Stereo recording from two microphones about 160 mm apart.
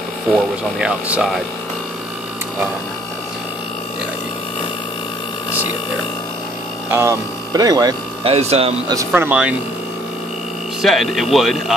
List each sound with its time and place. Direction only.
0.7 s speech: 5° right (ahead or behind)
6.9 s speech: 15° right (ahead or behind)
8.2 s speech: 40° right (ahead or behind)
8.9 s speech: 10° right (ahead or behind)
10.8 s speech: centre (ahead or behind)